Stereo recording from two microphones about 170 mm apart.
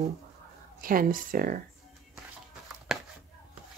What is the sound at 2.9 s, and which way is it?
Chopping, 5° right (ahead or behind).